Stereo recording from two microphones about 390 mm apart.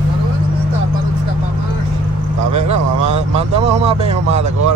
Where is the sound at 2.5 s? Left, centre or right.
Right.